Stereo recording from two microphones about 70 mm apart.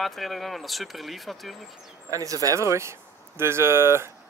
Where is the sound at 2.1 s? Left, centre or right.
Right.